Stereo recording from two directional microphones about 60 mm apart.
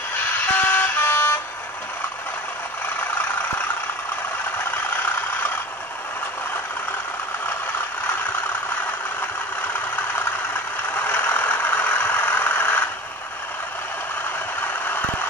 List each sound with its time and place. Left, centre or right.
0.5 s vehicle: left
11.0 s vehicle: left
14.6 s vehicle: left